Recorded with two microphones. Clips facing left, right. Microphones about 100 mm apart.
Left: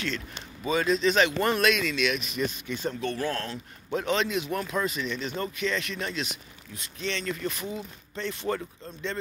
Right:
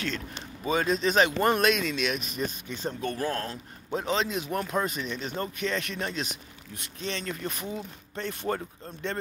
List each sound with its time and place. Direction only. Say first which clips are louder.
0.7 s speech: left 1 dB; 45° right (ahead or behind)